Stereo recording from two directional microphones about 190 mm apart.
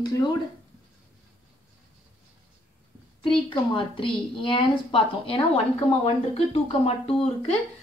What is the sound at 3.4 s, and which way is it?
A woman's voice, 25° left (ahead or behind).